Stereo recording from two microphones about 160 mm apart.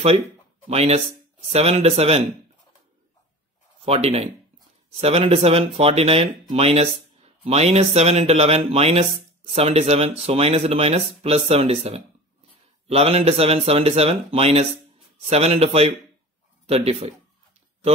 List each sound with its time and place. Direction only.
0.7 s speech: 40° right (ahead or behind)
3.8 s speech: 40° right (ahead or behind)